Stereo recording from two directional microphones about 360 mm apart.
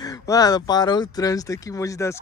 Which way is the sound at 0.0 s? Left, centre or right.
Centre.